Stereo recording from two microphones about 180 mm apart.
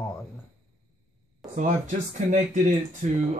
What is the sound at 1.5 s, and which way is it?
Speech, 45° right (ahead or behind).